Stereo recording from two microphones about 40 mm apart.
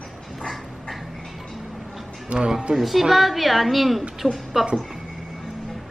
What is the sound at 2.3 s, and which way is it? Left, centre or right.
Speech, centre.